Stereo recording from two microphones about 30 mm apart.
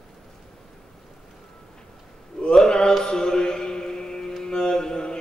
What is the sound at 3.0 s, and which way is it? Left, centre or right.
Music, left.